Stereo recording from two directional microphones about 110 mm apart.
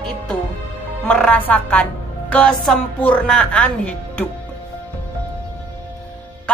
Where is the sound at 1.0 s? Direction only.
10° left (ahead or behind).